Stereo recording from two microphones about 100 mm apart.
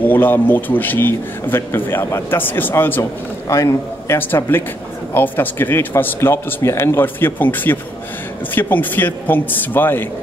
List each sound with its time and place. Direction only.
0.0 s a man's voice: 20° left (ahead or behind)